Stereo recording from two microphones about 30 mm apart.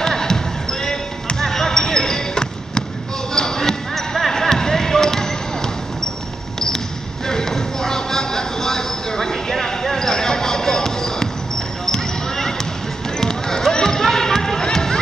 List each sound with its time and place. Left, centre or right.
0.0 s basketball bounce: centre
7.2 s clip-clop: centre
11.8 s basketball bounce: centre